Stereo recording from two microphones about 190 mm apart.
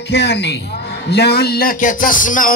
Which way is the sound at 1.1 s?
55° left (ahead or behind).